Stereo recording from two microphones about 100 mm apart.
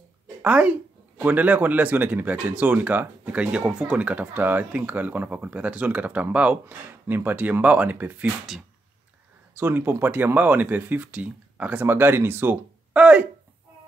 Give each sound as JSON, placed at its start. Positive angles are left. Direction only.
{"t": 0.4, "sound": "speech", "side_deg": -15}
{"t": 9.6, "sound": "speech", "side_deg": -20}